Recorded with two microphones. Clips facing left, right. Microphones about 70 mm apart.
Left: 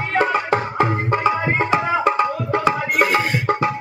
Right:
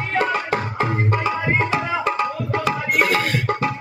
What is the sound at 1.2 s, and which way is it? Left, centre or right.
Tabla, left.